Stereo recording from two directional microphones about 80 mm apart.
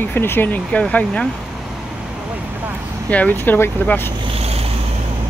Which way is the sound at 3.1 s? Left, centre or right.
Centre.